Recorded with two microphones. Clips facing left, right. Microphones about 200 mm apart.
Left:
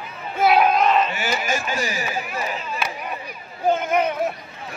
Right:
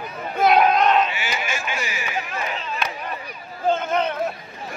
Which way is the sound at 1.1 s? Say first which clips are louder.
Left 4 dB; 45° left (ahead or behind).